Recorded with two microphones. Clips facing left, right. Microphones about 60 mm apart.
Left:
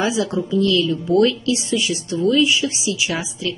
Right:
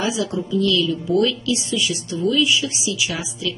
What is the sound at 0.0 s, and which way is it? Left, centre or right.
A woman's voice, left.